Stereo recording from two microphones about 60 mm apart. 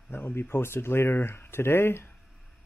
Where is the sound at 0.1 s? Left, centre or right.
Left.